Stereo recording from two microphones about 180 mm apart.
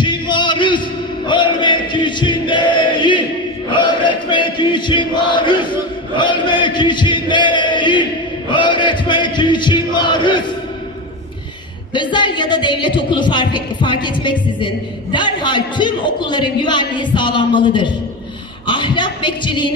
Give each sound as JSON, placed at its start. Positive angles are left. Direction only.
{"t": 0.0, "sound": "a sound", "side_deg": 25}
{"t": 3.7, "sound": "chant", "side_deg": 25}
{"t": 11.9, "sound": "a woman's voice", "side_deg": 25}